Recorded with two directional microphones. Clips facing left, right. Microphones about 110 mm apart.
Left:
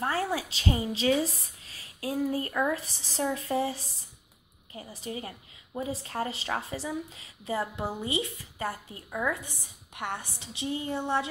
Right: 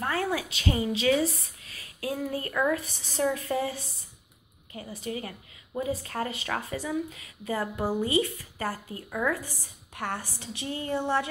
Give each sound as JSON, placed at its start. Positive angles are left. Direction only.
{"t": 0.0, "sound": "a woman's voice", "side_deg": 30}
{"t": 5.0, "sound": "speech", "side_deg": 25}
{"t": 7.7, "sound": "speech", "side_deg": -5}
{"t": 8.0, "sound": "speech", "side_deg": 25}